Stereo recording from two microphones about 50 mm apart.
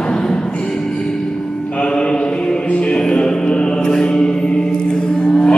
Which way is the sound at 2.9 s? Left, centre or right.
Centre.